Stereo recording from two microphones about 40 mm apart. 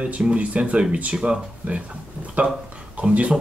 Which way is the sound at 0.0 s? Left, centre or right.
Right.